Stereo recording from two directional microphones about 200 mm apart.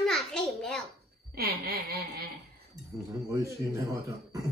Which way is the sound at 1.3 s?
50° right (ahead or behind).